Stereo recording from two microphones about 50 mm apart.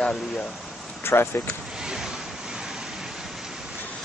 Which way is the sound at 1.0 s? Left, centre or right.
Left.